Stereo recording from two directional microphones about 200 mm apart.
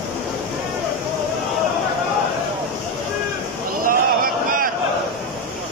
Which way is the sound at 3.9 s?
45° right (ahead or behind).